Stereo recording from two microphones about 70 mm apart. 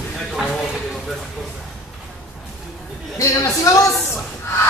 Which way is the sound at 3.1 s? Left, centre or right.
Left.